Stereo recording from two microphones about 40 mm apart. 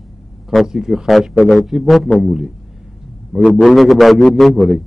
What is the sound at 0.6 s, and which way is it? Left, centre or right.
Speech, centre.